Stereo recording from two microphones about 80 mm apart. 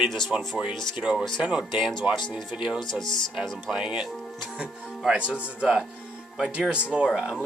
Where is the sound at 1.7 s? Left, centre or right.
Left.